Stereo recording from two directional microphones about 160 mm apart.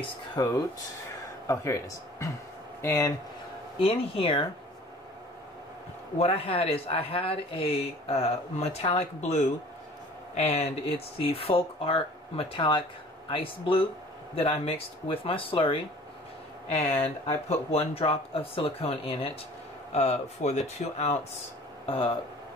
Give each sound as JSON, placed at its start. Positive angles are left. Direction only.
{"t": 0.4, "sound": "speech", "side_deg": 25}
{"t": 3.8, "sound": "speech", "side_deg": 35}
{"t": 6.1, "sound": "speech", "side_deg": 40}